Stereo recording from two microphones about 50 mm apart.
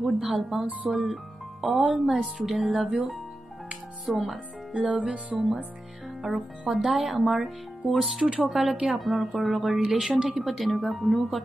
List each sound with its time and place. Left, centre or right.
0.2 s speech: centre
4.1 s speech: centre
4.9 s music: right
6.7 s speech: centre